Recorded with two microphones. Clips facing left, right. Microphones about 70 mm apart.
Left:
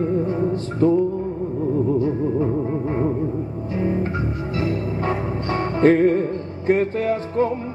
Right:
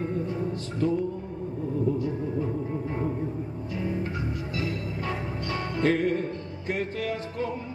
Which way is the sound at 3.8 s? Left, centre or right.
Left.